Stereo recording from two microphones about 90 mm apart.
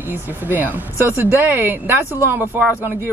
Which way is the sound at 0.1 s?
20° right (ahead or behind).